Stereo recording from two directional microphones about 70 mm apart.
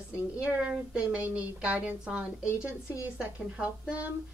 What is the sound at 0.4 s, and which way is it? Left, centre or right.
A woman's voice, centre.